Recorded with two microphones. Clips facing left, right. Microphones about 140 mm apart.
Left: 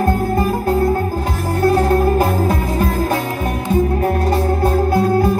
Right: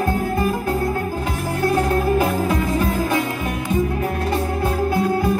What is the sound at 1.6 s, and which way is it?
Music, 35° left (ahead or behind).